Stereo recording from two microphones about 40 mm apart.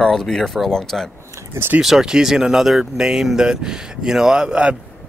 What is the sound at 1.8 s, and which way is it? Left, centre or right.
Speech, centre.